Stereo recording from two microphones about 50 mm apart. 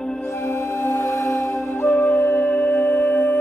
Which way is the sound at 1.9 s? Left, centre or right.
Left.